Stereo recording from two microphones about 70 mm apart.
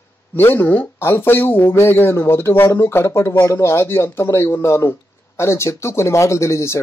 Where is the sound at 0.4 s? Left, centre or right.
Left.